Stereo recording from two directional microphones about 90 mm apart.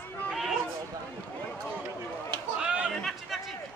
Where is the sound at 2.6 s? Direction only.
15° right (ahead or behind).